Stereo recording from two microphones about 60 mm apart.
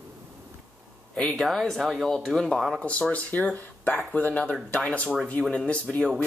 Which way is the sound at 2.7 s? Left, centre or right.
Centre.